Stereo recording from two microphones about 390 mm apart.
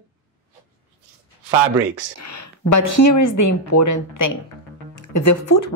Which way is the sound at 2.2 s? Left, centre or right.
Left.